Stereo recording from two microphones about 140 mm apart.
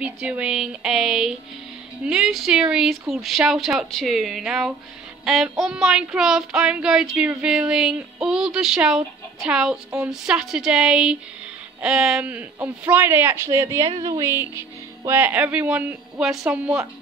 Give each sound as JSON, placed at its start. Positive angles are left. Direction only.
{"t": 0.0, "sound": "child singing", "side_deg": -10}
{"t": 11.8, "sound": "speech", "side_deg": -5}